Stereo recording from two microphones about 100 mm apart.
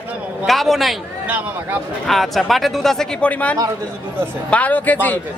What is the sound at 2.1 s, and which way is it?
Speech, centre (ahead or behind).